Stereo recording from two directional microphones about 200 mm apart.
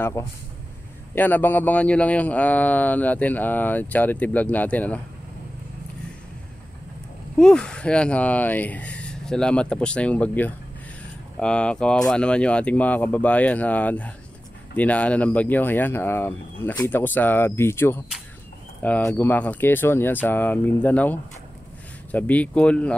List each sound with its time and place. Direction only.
0.0 s speech: 15° left (ahead or behind)
7.3 s speech: 5° left (ahead or behind)